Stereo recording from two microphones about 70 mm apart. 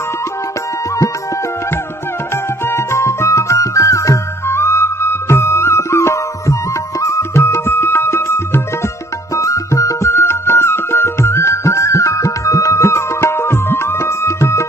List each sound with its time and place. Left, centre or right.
2.7 s music: left
9.3 s music: left